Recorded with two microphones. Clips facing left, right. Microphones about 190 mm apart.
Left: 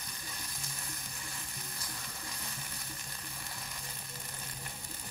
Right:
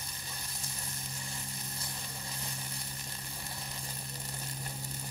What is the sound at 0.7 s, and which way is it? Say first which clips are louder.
Sizzle: right 2 dB; 25° right (ahead or behind).